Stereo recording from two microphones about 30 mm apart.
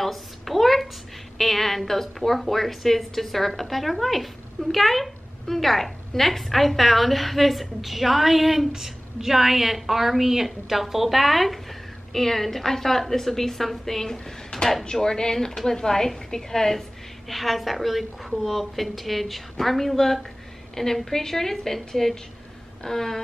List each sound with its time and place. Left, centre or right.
0.0 s a sound: centre
1.4 s a woman's voice: centre
17.3 s a woman's voice: centre